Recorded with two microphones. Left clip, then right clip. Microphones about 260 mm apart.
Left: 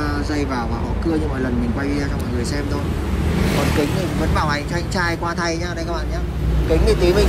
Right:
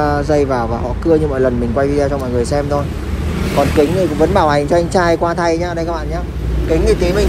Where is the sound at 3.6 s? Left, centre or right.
Left.